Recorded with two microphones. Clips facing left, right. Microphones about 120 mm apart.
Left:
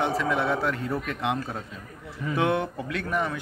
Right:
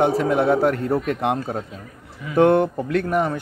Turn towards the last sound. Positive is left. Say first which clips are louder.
# right 7 dB
turn(degrees=-40)  # may be behind; listen again after turning